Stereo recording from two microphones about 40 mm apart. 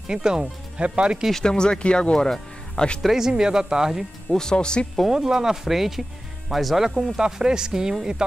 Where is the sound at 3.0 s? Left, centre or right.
Centre.